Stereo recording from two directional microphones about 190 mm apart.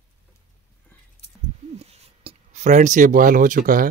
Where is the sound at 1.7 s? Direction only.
30° right (ahead or behind).